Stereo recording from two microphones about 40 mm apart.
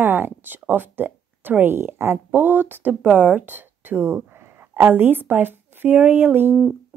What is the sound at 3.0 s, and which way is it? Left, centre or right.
Speech, right.